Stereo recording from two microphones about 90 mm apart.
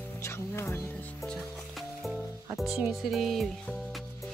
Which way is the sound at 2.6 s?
5° right (ahead or behind).